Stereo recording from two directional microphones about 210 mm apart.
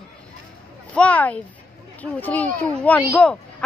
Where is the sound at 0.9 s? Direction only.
5° left (ahead or behind).